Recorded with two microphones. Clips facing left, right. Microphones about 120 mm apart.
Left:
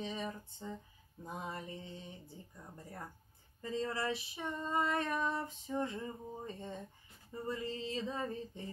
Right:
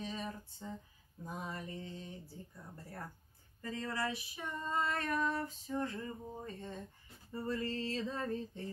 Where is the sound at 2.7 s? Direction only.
15° left (ahead or behind).